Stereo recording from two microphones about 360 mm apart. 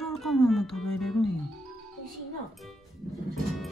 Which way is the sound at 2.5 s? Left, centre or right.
Centre.